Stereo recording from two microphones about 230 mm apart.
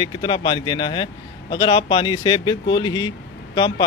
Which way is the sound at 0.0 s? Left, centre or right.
Centre.